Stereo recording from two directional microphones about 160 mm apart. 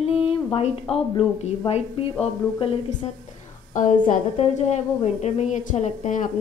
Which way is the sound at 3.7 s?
55° left (ahead or behind).